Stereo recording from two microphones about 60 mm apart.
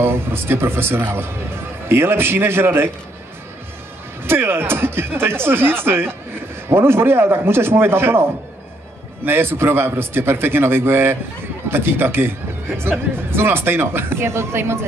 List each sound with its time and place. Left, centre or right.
0.0 s a man's voice: right
4.2 s a man's voice: right